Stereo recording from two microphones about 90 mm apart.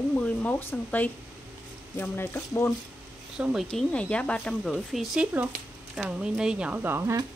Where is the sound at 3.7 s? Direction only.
10° left (ahead or behind).